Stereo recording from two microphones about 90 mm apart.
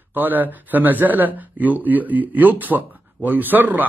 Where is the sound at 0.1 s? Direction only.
20° right (ahead or behind).